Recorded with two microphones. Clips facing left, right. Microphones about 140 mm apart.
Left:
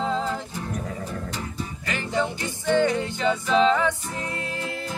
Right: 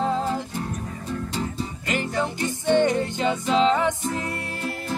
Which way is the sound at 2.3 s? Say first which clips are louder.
Right 5 dB; 20° right (ahead or behind).